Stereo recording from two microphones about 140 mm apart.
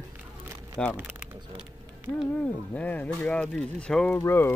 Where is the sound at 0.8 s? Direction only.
5° left (ahead or behind).